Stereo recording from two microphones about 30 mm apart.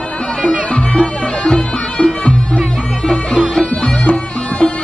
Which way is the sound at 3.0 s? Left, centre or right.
Left.